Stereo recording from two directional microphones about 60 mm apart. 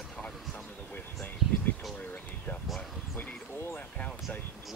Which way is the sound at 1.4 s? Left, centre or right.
Centre.